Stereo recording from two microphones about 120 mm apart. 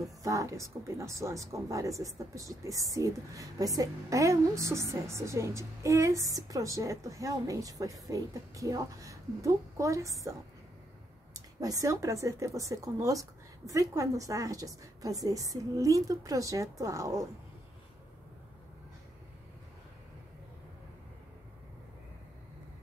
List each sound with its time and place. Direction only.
0.0 s speech: 25° right (ahead or behind)
11.6 s speech: 30° right (ahead or behind)